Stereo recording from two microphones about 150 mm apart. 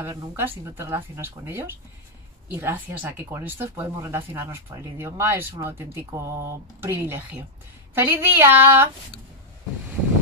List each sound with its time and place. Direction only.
0.0 s speech: 15° right (ahead or behind)